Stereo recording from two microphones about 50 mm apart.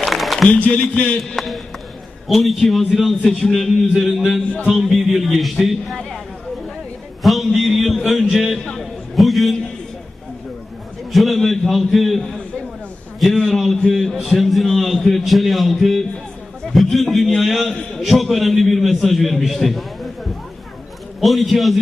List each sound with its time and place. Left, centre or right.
0.0 s a sound: centre
0.4 s speech: left
1.3 s a man's voice: centre
7.2 s a man's voice: centre
11.1 s a man's voice: centre
14.1 s a man's voice: centre
21.2 s a man's voice: centre